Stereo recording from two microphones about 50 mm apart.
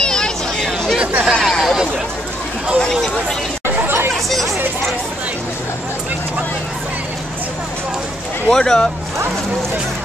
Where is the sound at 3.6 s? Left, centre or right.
Right.